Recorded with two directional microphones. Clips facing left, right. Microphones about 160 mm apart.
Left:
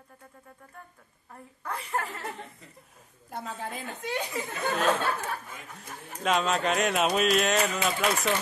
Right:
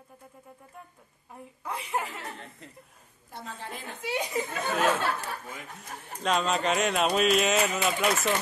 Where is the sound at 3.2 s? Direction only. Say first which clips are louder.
Left 4 dB; 50° left (ahead or behind).